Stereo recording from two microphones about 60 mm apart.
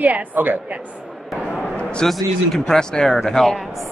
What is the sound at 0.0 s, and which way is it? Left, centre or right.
Speech, right.